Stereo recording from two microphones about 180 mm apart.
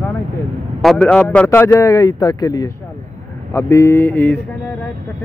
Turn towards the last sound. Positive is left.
turn(degrees=10)  # may be behind; listen again after turning